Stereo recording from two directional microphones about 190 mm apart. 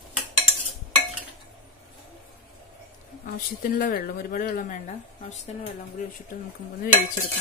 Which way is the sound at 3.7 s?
50° left (ahead or behind).